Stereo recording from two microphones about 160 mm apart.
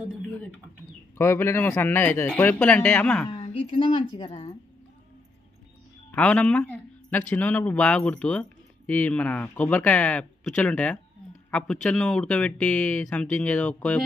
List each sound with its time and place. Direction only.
1.1 s speech: 15° left (ahead or behind)
3.3 s a woman's voice: 35° left (ahead or behind)
6.1 s speech: 5° left (ahead or behind)